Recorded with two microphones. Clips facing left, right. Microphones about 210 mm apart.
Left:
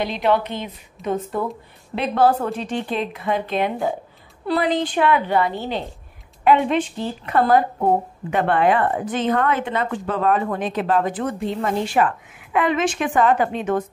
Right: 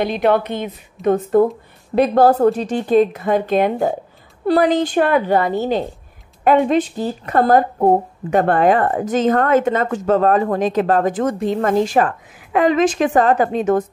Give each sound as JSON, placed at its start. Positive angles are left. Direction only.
{"t": 0.0, "sound": "a woman's voice", "side_deg": -50}